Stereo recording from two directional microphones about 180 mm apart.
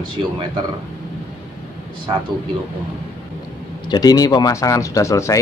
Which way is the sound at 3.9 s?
20° left (ahead or behind).